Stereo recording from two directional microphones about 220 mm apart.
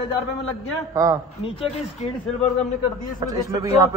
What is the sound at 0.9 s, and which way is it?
Speech, 15° right (ahead or behind).